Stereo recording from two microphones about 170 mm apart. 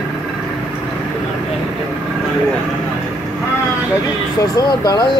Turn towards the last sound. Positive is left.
turn(degrees=25)  # may be behind; listen again after turning